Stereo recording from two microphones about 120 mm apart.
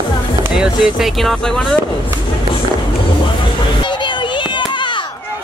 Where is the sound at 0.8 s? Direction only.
Centre (ahead or behind).